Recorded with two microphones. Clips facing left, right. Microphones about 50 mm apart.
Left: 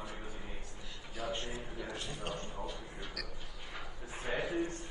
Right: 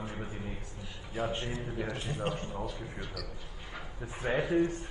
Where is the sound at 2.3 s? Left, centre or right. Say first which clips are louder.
Right 5 dB; right.